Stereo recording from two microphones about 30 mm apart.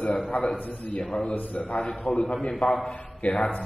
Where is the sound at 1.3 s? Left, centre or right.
Left.